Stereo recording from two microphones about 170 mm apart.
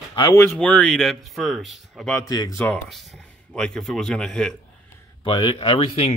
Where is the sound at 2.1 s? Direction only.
20° left (ahead or behind).